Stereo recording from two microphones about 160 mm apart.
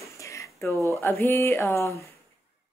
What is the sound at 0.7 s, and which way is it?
Speech, 20° right (ahead or behind).